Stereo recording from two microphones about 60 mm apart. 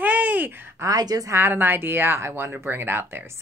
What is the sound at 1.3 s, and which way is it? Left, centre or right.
A woman's voice, right.